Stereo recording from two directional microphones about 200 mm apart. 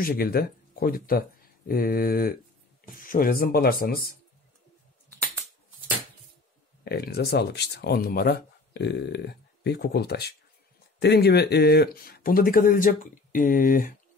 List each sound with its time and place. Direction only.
0.0 s speech: 50° left (ahead or behind)
6.8 s speech: 50° left (ahead or behind)